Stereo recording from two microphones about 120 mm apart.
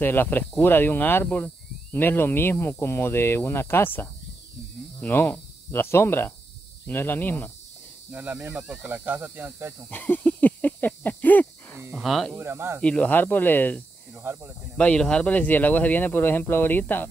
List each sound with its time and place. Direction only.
0.0 s speech: 15° left (ahead or behind)
8.1 s speech: 15° right (ahead or behind)
9.8 s a sound: 15° left (ahead or behind)
11.9 s speech: centre (ahead or behind)
12.4 s speech: 20° right (ahead or behind)
12.8 s speech: 10° left (ahead or behind)
14.2 s speech: 20° right (ahead or behind)
14.8 s speech: 10° left (ahead or behind)